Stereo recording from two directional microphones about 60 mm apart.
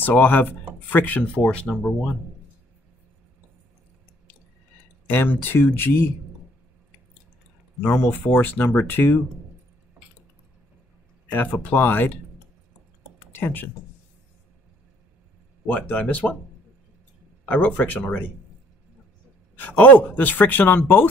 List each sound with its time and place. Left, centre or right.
0.0 s speech: left; by 2.1 s centre
5.0 s speech: left
7.8 s speech: left
11.2 s speech: left
13.3 s speech: left
15.6 s speech: left
17.5 s speech: left
19.5 s speech: left